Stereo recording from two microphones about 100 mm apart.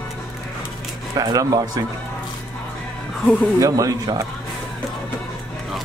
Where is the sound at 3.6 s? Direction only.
35° right (ahead or behind).